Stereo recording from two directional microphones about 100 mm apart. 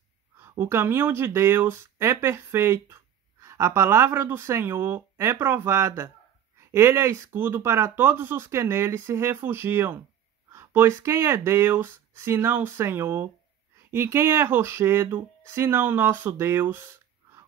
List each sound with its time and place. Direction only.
0.4 s speech: 25° right (ahead or behind)